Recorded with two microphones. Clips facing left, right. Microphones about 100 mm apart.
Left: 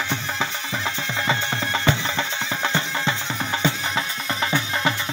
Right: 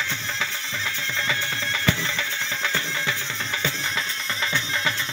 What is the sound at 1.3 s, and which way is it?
Music, 25° left (ahead or behind).